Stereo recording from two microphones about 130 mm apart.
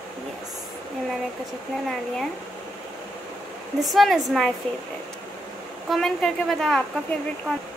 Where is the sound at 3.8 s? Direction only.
Centre (ahead or behind).